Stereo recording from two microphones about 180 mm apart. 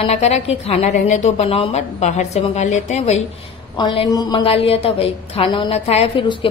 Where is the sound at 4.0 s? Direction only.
20° left (ahead or behind).